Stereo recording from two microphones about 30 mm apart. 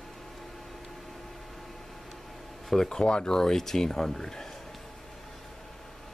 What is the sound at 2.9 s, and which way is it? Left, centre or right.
Speech, left.